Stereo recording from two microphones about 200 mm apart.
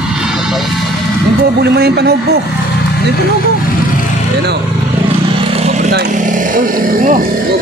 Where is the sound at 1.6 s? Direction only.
55° right (ahead or behind).